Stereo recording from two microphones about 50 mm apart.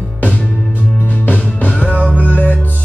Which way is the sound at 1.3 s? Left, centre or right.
Left.